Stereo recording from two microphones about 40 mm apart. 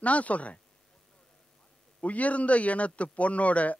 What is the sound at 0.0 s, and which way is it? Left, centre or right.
Speech, left.